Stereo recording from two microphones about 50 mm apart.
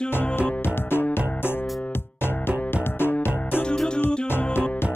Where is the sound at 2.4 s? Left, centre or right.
Left.